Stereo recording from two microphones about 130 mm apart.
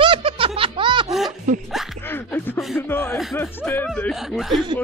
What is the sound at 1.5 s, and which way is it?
Speech, 75° right (ahead or behind).